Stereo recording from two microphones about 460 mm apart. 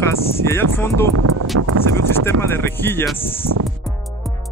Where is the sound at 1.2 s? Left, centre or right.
Right.